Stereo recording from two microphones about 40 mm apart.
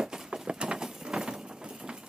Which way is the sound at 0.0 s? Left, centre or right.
Centre.